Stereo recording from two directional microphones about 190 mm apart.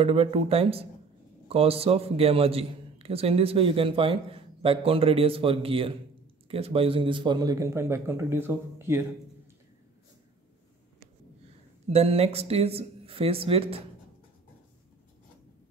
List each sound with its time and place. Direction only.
0.0 s a man's voice: 30° right (ahead or behind); by 9.0 s 10° right (ahead or behind)
11.9 s speech: 30° right (ahead or behind)